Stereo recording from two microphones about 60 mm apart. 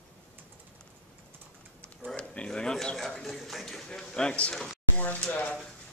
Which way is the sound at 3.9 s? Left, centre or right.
Centre.